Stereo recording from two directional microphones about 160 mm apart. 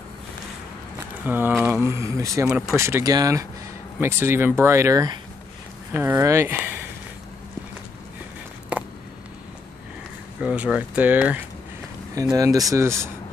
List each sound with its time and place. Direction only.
1.2 s speech: 10° right (ahead or behind)
8.7 s a sound: 10° right (ahead or behind)
10.4 s speech: 5° right (ahead or behind)
12.2 s speech: 20° right (ahead or behind)